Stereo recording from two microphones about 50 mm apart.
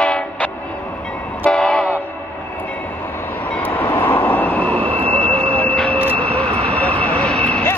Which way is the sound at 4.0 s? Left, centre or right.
Left.